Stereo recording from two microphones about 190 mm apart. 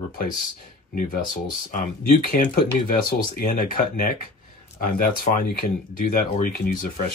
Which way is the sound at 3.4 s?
50° left (ahead or behind).